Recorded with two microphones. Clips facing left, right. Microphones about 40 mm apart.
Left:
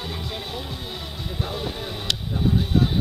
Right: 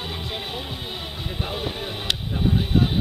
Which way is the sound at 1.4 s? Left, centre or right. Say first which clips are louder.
Right 2 dB; right.